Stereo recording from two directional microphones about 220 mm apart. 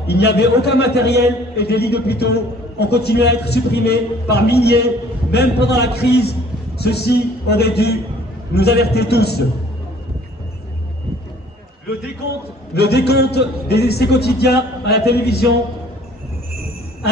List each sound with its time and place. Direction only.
0.0 s a man's voice: 50° left (ahead or behind)
12.7 s a man's voice: 50° left (ahead or behind)